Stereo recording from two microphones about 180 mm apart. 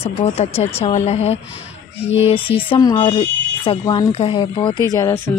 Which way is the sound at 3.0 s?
35° left (ahead or behind).